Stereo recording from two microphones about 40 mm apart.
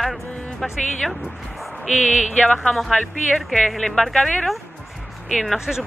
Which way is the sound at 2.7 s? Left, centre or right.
Centre.